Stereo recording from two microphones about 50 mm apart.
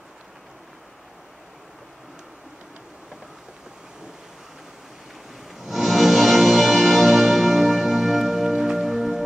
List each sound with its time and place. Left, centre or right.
5.6 s music: centre